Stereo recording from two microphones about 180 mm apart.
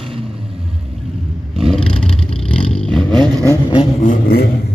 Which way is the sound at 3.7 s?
35° left (ahead or behind).